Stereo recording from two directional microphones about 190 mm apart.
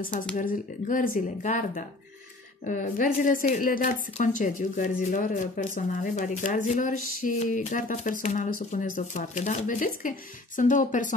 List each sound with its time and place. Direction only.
0.4 s a woman's voice: 45° left (ahead or behind)